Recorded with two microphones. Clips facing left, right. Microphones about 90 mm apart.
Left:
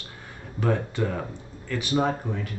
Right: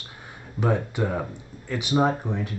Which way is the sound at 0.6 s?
15° right (ahead or behind).